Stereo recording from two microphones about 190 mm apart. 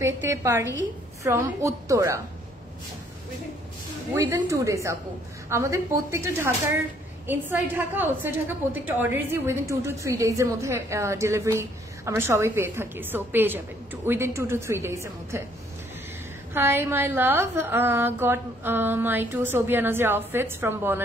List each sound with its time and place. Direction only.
0.0 s a woman's voice: 15° right (ahead or behind)
4.5 s a woman's voice: 15° right (ahead or behind)
16.5 s a woman's voice: 10° right (ahead or behind)